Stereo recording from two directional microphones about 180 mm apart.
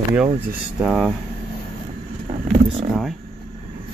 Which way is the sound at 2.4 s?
Centre (ahead or behind).